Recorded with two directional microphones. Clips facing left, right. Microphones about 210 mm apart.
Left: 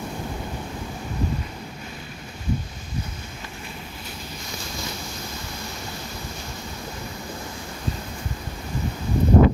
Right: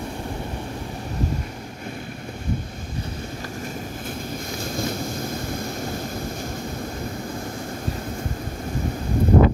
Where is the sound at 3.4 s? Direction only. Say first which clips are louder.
Right 6 dB; 45° right (ahead or behind).